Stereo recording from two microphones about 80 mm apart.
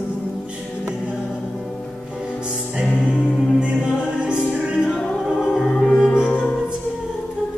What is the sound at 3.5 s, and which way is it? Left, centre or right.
Music, centre.